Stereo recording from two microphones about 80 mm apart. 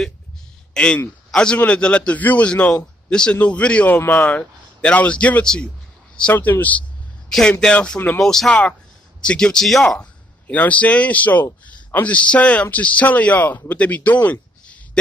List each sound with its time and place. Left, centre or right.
0.7 s a man's voice: centre
6.3 s speech: left
7.2 s a man's voice: centre
9.9 s speech: left